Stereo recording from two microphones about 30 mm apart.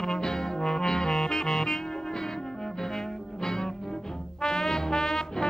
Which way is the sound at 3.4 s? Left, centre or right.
Left.